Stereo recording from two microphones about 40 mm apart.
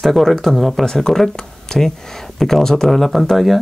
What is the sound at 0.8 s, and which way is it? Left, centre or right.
Speech, centre.